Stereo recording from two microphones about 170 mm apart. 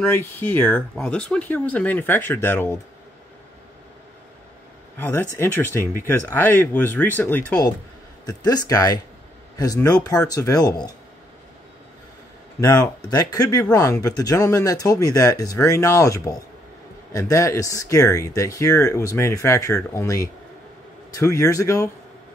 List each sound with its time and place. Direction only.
0.0 s speech: 10° left (ahead or behind)
4.9 s speech: 10° left (ahead or behind)
8.3 s speech: 20° left (ahead or behind)
10.0 s speech: 20° left (ahead or behind)
12.5 s speech: 20° left (ahead or behind)